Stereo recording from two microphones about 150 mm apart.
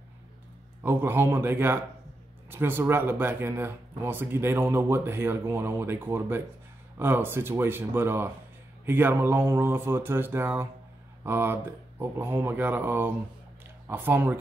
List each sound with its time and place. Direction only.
0.8 s speech: 15° right (ahead or behind)